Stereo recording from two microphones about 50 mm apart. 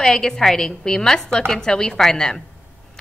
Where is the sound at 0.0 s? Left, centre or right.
Centre.